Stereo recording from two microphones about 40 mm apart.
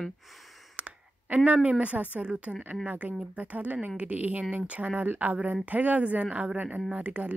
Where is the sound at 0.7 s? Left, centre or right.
Right.